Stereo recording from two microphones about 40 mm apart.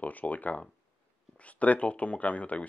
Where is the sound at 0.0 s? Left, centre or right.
Left.